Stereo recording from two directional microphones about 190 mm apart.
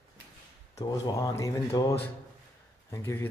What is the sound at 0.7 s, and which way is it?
Speech, 20° left (ahead or behind).